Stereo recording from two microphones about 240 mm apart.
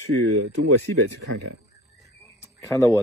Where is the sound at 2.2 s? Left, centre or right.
Centre.